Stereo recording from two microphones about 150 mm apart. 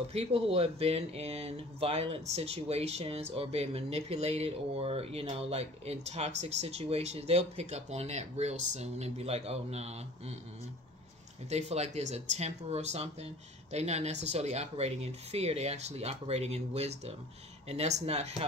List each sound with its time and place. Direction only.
0.1 s speech: 40° right (ahead or behind)
11.5 s speech: 45° right (ahead or behind)